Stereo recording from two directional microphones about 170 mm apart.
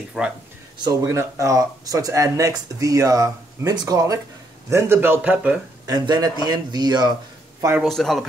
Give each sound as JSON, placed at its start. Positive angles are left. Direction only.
{"t": 0.2, "sound": "a man's voice", "side_deg": -5}
{"t": 0.7, "sound": "speech", "side_deg": -20}
{"t": 5.9, "sound": "speech", "side_deg": -25}
{"t": 7.8, "sound": "a man's voice", "side_deg": 0}